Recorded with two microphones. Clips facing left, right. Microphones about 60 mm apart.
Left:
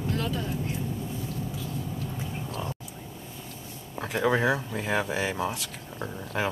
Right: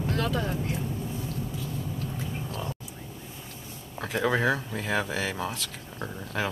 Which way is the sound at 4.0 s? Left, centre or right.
Centre.